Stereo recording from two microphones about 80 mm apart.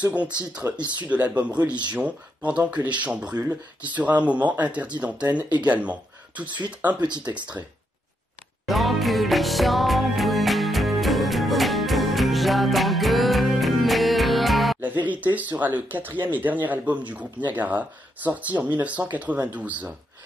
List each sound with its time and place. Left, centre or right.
0.0 s speech: centre
7.0 s speech: right
8.6 s music: centre
15.0 s speech: centre